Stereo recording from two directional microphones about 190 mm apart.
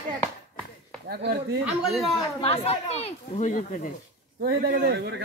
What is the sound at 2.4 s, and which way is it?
Speech, 30° left (ahead or behind).